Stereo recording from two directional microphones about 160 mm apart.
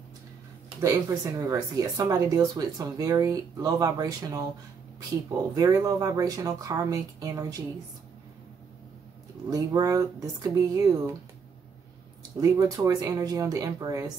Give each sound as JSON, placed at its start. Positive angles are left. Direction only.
{"t": 0.7, "sound": "speech", "side_deg": -20}
{"t": 5.6, "sound": "speech", "side_deg": -20}
{"t": 9.5, "sound": "speech", "side_deg": -20}
{"t": 12.4, "sound": "speech", "side_deg": -20}